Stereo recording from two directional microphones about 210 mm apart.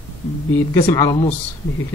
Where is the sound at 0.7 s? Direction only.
15° left (ahead or behind).